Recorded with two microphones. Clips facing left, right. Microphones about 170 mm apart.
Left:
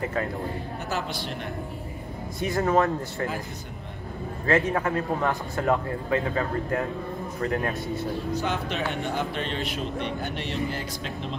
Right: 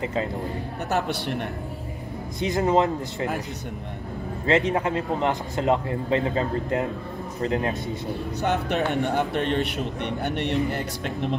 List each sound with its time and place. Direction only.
0.0 s a man's voice: 20° right (ahead or behind)
0.8 s a man's voice: 65° right (ahead or behind)
2.4 s a man's voice: 20° right (ahead or behind)
4.5 s a man's voice: 20° right (ahead or behind)
8.3 s a man's voice: 65° right (ahead or behind)